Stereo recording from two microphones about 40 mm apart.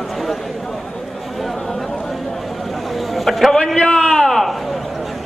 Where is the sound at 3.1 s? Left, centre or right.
Centre.